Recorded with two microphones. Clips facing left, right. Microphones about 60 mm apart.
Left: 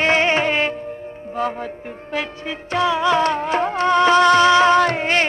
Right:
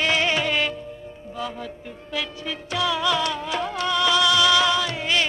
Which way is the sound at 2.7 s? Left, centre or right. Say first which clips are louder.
Left 6 dB; left.